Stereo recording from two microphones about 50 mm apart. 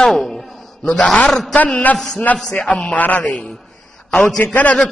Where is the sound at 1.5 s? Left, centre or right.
Left.